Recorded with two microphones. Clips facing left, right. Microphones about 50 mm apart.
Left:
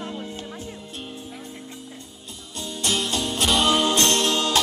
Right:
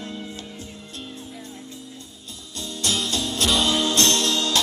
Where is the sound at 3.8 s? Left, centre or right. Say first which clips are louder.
Left 1 dB; left.